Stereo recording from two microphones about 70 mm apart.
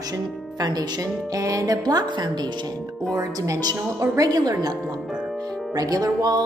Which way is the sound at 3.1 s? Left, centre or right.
Right.